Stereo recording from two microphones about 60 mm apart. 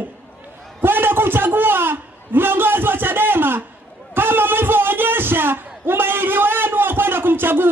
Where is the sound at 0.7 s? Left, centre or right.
Right.